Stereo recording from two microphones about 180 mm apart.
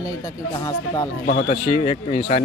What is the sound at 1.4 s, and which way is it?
Speech, 40° left (ahead or behind).